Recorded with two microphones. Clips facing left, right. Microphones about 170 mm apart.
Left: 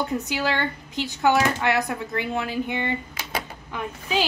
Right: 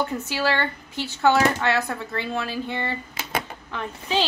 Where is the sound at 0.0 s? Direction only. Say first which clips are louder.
Right 1 dB; 20° left (ahead or behind).